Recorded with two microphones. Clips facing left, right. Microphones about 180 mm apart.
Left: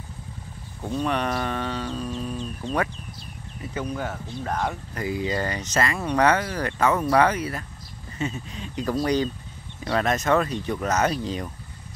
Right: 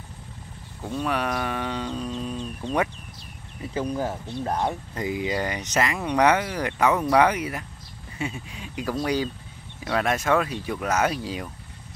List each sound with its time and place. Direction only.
0.9 s speech: 5° right (ahead or behind)
3.7 s speech: 30° right (ahead or behind)
4.1 s speech: 20° right (ahead or behind)